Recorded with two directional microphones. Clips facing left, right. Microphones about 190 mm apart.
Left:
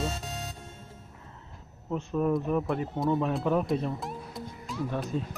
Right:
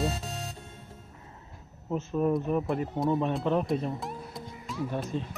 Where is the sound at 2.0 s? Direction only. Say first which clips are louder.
Even; 10° right (ahead or behind).